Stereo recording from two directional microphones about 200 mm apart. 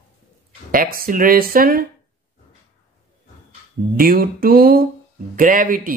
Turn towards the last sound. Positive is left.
turn(degrees=-45)  # may be behind; listen again after turning